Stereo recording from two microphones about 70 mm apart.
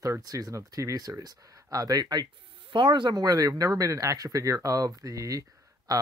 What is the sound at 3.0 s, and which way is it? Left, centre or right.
Speech, right.